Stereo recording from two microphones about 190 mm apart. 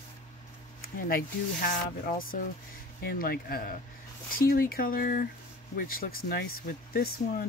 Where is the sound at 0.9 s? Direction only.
50° left (ahead or behind).